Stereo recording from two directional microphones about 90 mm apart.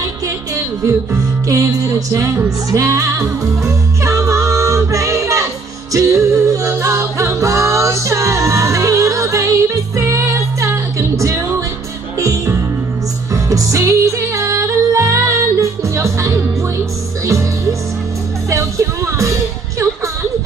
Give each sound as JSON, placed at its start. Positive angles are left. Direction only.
{"t": 0.6, "sound": "music", "side_deg": -30}